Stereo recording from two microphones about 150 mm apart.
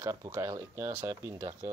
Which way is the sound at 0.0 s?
20° right (ahead or behind).